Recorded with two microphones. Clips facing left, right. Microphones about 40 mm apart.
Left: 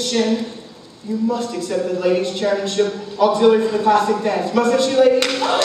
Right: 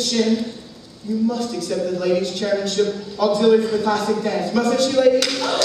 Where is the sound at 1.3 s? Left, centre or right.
Left.